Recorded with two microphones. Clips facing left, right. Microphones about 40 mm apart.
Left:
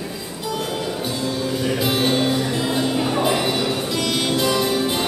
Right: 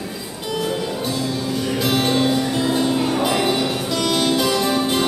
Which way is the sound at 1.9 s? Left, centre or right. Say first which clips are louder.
Right 2 dB; centre.